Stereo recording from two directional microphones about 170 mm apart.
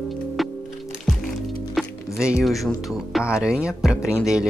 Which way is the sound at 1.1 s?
Centre (ahead or behind).